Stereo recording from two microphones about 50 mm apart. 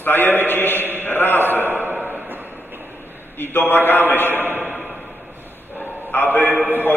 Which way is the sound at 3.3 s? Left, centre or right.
Left.